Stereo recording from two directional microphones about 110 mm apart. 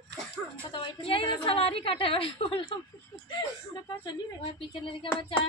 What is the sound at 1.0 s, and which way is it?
A woman's voice, 50° left (ahead or behind).